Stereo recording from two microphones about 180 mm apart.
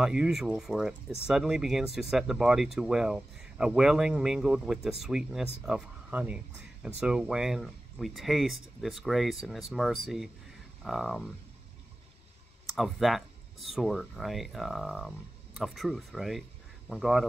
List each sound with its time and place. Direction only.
0.0 s speech: 5° right (ahead or behind)
12.6 s speech: centre (ahead or behind)